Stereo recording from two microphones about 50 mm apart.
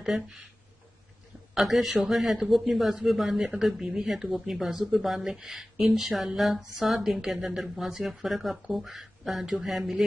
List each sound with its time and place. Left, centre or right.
0.0 s speech: centre
1.5 s speech: centre